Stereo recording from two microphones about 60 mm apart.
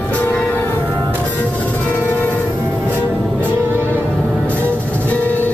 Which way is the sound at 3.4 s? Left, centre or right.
Right.